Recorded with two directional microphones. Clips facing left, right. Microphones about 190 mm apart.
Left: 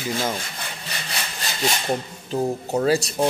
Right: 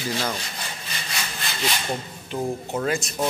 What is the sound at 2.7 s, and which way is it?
Speech, 35° left (ahead or behind).